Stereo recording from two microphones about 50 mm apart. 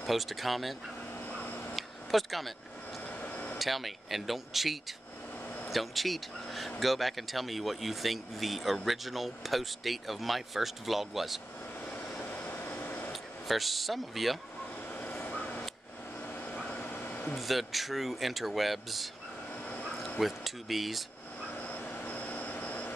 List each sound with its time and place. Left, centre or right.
0.0 s speech: centre
1.4 s a sound: left
1.8 s a sound: centre
3.2 s vehicle: left
3.5 s speech: centre
12.3 s vehicle: left
13.1 s speech: centre
15.0 s vehicle: left
17.4 s speech: centre
19.7 s dog: left
20.2 s speech: centre
21.6 s vehicle: left